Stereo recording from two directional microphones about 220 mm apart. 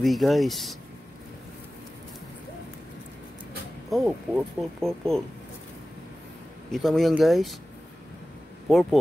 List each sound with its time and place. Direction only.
0.0 s speech: centre (ahead or behind)
3.9 s speech: centre (ahead or behind)
6.7 s speech: centre (ahead or behind)
8.6 s speech: centre (ahead or behind)